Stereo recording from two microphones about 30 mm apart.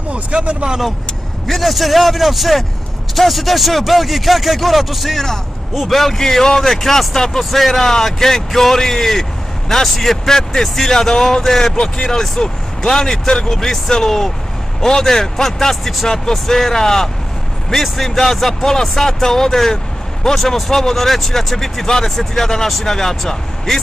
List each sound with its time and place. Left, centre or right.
0.3 s speech: right
1.5 s speech: centre
5.1 s speech: centre
6.1 s speech: centre
16.1 s speech: centre